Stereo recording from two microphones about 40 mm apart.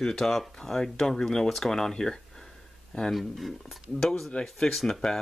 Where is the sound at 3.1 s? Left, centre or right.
Centre.